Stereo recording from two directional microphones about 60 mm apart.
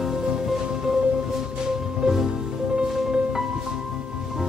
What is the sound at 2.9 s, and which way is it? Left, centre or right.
Music, centre.